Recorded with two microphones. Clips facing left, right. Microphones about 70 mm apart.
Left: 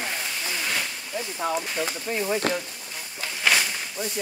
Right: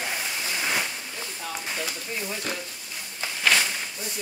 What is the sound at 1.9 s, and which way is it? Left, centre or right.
Speech, left.